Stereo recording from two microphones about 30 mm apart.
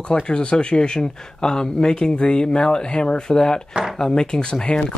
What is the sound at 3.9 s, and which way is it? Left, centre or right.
Speech, left.